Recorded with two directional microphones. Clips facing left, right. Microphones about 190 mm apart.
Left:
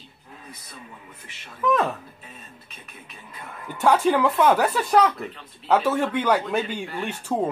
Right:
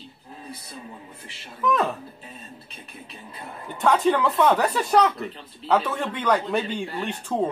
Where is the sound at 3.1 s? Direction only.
30° right (ahead or behind).